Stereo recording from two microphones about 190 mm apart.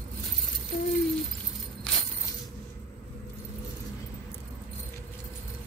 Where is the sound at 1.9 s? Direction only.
5° left (ahead or behind).